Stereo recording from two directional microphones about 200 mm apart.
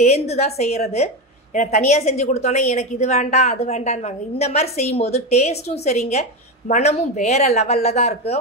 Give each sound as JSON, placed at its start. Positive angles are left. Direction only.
{"t": 0.0, "sound": "a woman's voice", "side_deg": 30}